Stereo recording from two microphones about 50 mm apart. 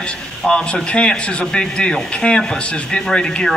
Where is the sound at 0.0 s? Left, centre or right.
Centre.